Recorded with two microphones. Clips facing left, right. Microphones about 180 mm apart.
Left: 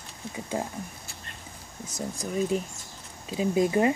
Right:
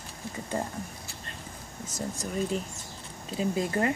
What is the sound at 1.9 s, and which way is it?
Speech, 5° left (ahead or behind).